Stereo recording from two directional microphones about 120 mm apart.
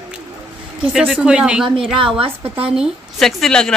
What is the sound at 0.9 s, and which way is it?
A woman's voice, 5° right (ahead or behind).